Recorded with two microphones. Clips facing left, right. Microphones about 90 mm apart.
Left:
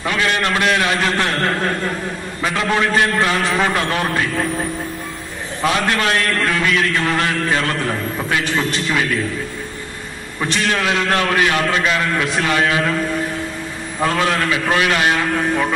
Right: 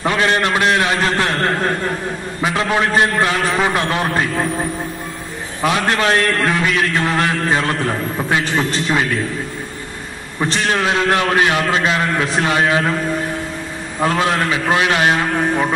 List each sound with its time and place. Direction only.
0.0 s a man's voice: 30° right (ahead or behind)
3.4 s a man's voice: 5° right (ahead or behind)
3.7 s a man's voice: 15° right (ahead or behind)
5.9 s a man's voice: 25° right (ahead or behind)
10.5 s a man's voice: 30° right (ahead or behind)
14.0 s a man's voice: 20° right (ahead or behind)